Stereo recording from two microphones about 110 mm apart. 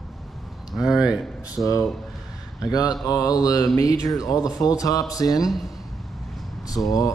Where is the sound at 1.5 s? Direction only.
30° left (ahead or behind).